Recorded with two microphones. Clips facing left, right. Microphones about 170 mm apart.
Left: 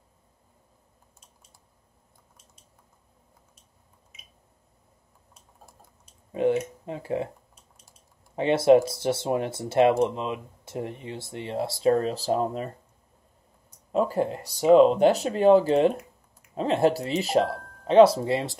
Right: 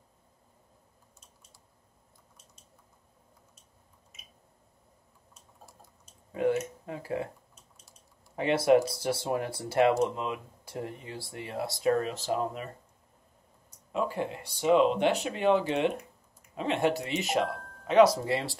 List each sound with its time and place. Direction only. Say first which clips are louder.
6.3 s speech: left 4 dB; 25° left (ahead or behind)
8.4 s speech: left 5 dB; 25° left (ahead or behind)
13.9 s speech: left 7 dB; 40° left (ahead or behind)
17.5 s music: left 4 dB; centre (ahead or behind)
17.8 s speech: left 5 dB; 30° left (ahead or behind)